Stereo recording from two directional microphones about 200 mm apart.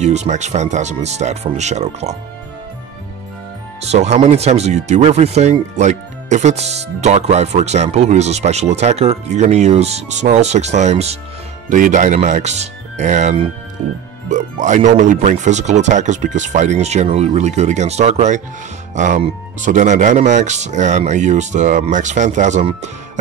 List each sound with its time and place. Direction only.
0.0 s speech: 35° right (ahead or behind)
3.8 s speech: 35° right (ahead or behind)